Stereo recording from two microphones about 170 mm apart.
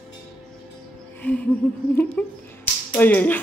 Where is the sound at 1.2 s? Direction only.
10° left (ahead or behind).